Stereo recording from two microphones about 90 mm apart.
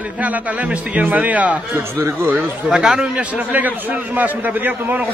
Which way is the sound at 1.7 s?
30° right (ahead or behind).